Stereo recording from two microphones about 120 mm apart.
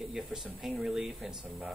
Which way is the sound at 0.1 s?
5° right (ahead or behind).